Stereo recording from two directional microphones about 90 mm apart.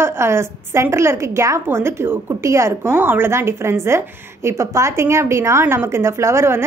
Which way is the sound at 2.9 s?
25° right (ahead or behind).